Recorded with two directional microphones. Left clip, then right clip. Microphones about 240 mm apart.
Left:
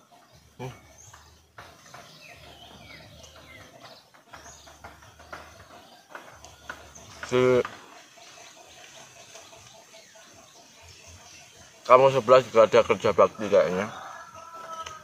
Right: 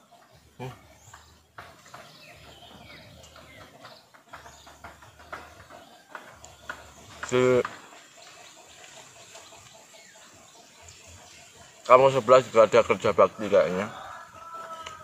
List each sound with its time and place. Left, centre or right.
5.3 s a sound: centre
7.2 s a man's voice: centre
11.8 s a man's voice: centre